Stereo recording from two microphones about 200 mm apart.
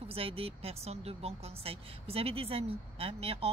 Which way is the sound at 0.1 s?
30° right (ahead or behind).